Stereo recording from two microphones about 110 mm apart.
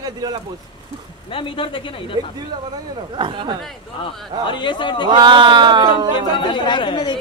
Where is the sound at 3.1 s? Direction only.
50° right (ahead or behind).